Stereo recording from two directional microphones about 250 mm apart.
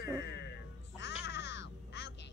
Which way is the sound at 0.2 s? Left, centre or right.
Left.